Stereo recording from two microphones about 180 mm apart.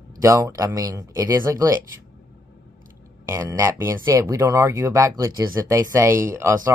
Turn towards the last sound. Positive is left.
turn(degrees=-15)  # may be behind; listen again after turning